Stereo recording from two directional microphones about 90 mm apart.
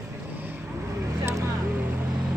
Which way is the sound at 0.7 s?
30° right (ahead or behind).